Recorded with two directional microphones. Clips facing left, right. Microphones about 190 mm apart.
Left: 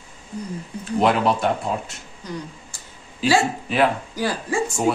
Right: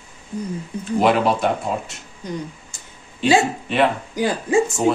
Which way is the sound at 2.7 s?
20° right (ahead or behind).